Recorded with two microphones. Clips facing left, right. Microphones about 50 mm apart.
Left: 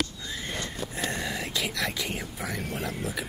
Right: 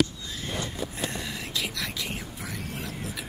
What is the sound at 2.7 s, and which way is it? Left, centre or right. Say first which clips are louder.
Speech: left 4 dB; left.